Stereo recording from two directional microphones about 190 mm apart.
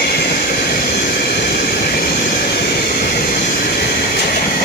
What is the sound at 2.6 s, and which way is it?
Vehicle, 50° left (ahead or behind).